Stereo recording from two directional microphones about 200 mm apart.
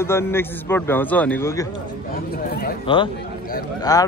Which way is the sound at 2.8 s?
25° left (ahead or behind).